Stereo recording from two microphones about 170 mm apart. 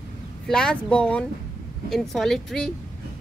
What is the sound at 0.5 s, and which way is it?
Speech, 5° left (ahead or behind).